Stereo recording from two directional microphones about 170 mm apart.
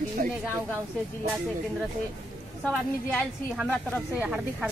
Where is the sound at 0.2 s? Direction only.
50° right (ahead or behind).